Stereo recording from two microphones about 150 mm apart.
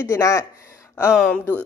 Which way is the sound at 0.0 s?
20° left (ahead or behind).